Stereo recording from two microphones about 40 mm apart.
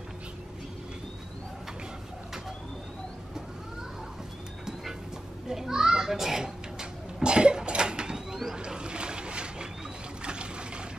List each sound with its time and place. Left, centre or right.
5.5 s children playing: centre
7.2 s cough: right
8.5 s boat: right
10.2 s a sound: right